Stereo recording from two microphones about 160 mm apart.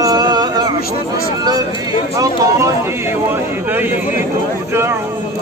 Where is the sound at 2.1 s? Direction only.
20° right (ahead or behind).